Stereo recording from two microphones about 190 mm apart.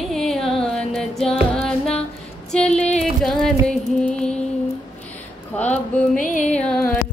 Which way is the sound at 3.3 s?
5° left (ahead or behind).